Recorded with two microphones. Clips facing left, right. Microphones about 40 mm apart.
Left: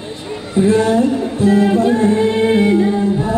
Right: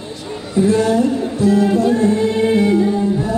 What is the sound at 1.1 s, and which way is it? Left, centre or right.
Music, left.